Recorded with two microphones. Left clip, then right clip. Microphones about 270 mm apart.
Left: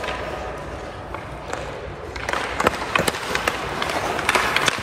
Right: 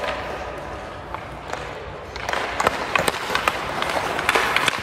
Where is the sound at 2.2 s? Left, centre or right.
Right.